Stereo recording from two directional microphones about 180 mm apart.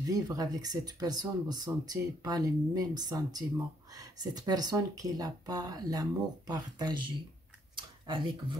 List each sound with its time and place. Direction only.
0.0 s speech: 20° right (ahead or behind)